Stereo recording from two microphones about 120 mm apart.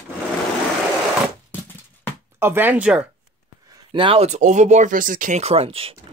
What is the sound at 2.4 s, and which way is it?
Speech, 15° right (ahead or behind).